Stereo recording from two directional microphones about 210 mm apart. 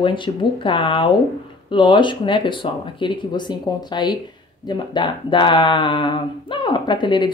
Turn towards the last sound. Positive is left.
turn(degrees=20)  # may be behind; listen again after turning